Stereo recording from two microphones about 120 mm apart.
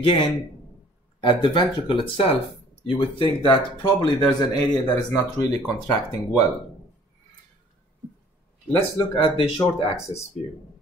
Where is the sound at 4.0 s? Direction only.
35° left (ahead or behind).